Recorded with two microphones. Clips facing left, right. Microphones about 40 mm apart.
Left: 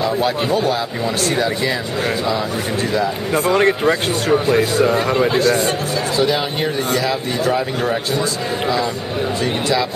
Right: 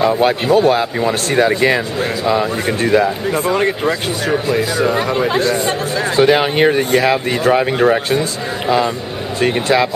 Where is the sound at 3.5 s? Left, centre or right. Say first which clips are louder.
Left 5 dB; centre.